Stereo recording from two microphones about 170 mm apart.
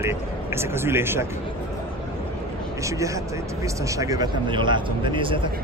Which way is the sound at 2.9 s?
20° right (ahead or behind).